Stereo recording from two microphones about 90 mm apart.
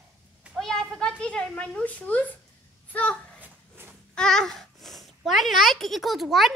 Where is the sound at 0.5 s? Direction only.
5° left (ahead or behind).